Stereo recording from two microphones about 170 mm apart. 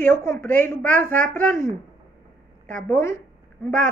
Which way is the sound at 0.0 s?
15° left (ahead or behind).